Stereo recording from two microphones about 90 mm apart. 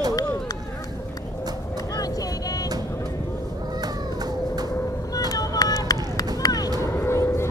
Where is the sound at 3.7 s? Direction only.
45° right (ahead or behind).